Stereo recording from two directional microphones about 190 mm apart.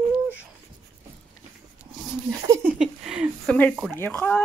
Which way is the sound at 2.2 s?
15° right (ahead or behind).